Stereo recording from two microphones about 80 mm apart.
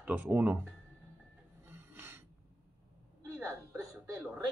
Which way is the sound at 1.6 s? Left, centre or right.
Right.